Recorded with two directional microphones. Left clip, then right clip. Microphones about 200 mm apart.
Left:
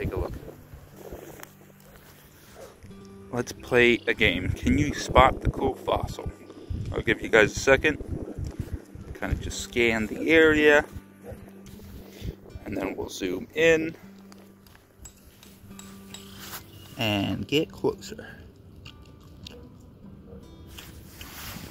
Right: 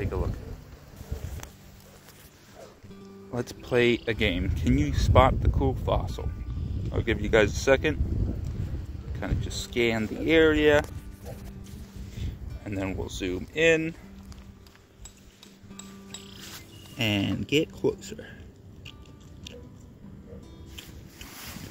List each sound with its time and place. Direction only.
3.0 s speech: centre (ahead or behind)
9.1 s speech: centre (ahead or behind)
12.1 s music: centre (ahead or behind)
13.2 s speech: centre (ahead or behind)
17.2 s speech: 30° left (ahead or behind)
17.7 s speech: 5° left (ahead or behind)